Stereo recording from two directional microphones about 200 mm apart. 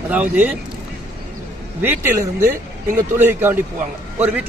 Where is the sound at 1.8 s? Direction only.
10° right (ahead or behind).